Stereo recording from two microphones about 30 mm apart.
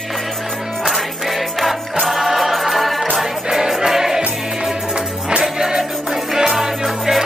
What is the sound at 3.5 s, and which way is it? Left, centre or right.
Music, centre.